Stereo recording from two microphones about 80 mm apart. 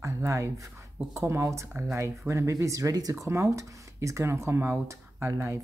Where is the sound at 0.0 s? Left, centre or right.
Right.